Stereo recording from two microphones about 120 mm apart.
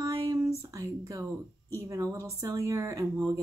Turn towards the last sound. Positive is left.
turn(degrees=-30)  # may be behind; listen again after turning